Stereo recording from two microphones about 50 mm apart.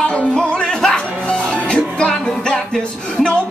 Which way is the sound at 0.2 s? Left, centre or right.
Centre.